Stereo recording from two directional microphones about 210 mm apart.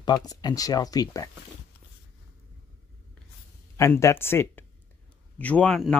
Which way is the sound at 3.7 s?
15° left (ahead or behind).